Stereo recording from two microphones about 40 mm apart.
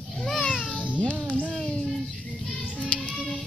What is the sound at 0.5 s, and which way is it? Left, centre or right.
Music, centre.